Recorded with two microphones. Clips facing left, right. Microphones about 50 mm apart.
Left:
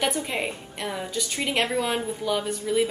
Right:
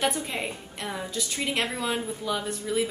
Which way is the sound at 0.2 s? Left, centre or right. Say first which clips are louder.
Left 3 dB; centre.